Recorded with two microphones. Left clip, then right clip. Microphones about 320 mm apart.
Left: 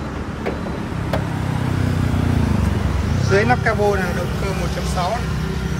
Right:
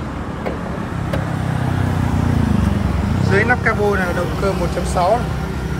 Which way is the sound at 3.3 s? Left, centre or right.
Centre.